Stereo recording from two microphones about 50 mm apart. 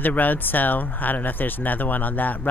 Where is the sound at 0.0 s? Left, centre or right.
Left.